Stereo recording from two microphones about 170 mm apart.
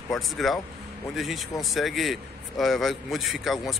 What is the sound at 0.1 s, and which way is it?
A man's voice, centre (ahead or behind).